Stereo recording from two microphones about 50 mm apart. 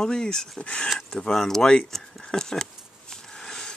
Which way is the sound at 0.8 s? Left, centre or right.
Centre.